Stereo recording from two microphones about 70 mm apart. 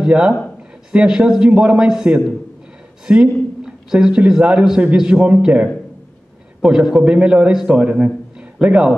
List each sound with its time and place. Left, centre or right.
0.0 s a man's voice: centre
3.1 s a man's voice: centre
8.4 s a sound: centre